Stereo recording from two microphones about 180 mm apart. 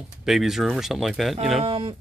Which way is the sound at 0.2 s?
Centre (ahead or behind).